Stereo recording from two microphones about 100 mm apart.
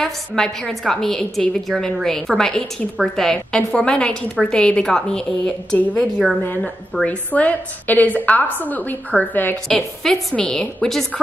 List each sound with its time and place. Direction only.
0.0 s a woman's voice: 5° left (ahead or behind)
6.4 s a woman's voice: 15° left (ahead or behind)
9.7 s a woman's voice: 5° left (ahead or behind)